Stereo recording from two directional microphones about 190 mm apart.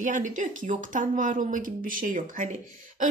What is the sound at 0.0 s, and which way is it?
Speech, 40° right (ahead or behind).